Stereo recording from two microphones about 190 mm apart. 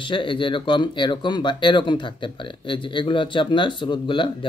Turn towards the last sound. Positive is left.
turn(degrees=25)  # may be behind; listen again after turning